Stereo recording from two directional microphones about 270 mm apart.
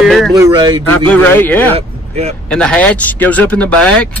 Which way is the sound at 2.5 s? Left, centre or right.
Centre.